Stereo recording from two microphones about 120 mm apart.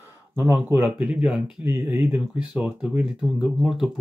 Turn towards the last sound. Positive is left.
turn(degrees=-5)  # may be behind; listen again after turning